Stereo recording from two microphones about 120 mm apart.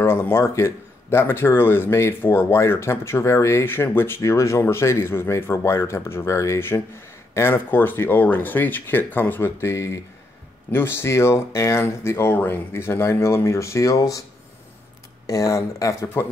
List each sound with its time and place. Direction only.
0.0 s speech: 20° left (ahead or behind)
15.2 s speech: 25° left (ahead or behind)